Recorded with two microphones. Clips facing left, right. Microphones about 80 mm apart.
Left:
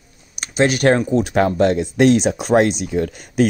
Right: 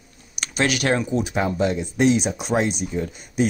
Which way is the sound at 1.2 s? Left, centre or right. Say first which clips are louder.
Left 6 dB; left.